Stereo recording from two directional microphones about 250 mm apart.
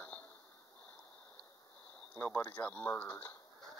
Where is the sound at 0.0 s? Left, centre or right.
Centre.